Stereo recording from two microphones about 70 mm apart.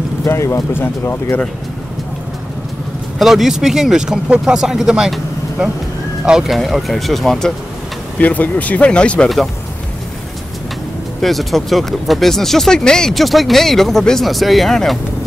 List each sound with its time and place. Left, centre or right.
0.3 s speech: left
3.2 s speech: centre
6.2 s speech: centre
8.2 s speech: left
11.1 s speech: centre